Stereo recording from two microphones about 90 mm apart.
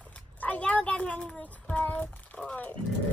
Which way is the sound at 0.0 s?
15° left (ahead or behind).